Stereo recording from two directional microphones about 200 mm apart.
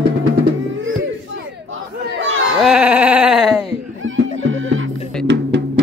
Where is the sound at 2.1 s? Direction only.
75° right (ahead or behind).